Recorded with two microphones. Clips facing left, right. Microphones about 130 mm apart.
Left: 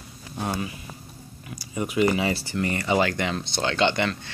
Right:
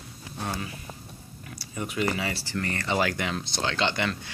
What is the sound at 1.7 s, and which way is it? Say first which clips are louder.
Speech: left 6 dB; 15° left (ahead or behind).